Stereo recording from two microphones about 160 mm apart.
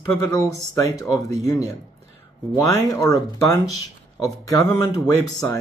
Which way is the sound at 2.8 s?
20° left (ahead or behind).